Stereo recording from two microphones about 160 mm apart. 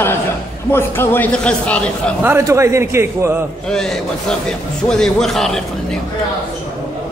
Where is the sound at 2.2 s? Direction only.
15° right (ahead or behind).